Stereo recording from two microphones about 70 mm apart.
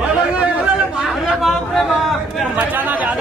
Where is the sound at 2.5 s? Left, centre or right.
Right.